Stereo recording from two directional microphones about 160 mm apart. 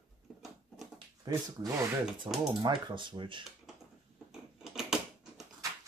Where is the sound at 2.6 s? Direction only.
30° right (ahead or behind).